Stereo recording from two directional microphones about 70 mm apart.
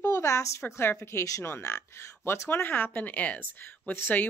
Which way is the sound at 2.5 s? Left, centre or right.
Left.